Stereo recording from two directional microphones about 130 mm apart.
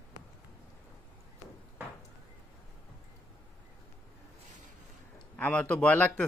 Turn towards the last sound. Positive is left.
turn(degrees=10)  # may be behind; listen again after turning